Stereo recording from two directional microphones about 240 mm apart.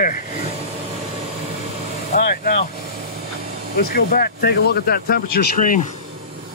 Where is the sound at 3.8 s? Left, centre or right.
Left.